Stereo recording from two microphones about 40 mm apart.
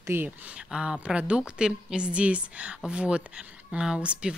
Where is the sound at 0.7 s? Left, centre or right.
Centre.